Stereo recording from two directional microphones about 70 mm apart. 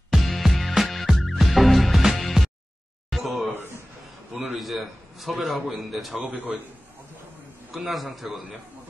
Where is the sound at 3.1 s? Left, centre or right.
Centre.